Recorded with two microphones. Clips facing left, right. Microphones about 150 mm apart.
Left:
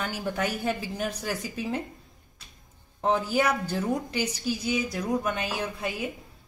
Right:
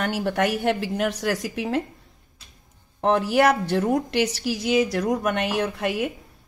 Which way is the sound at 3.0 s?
70° right (ahead or behind).